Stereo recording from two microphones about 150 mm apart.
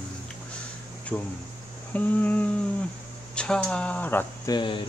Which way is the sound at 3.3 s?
5° left (ahead or behind).